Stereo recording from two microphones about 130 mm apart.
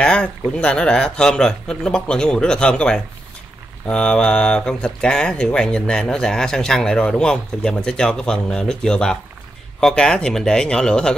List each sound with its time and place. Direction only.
0.0 s speech: 10° left (ahead or behind)